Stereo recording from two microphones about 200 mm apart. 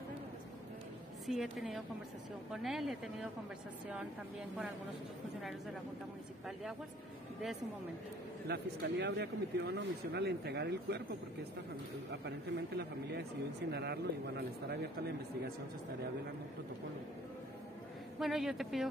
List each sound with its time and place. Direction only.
1.2 s speech: centre (ahead or behind)
8.5 s speech: 60° right (ahead or behind)
12.1 s speech: 60° right (ahead or behind)
18.2 s speech: centre (ahead or behind)